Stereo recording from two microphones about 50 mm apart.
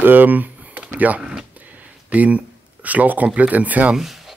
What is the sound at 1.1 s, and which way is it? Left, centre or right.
Speech, centre.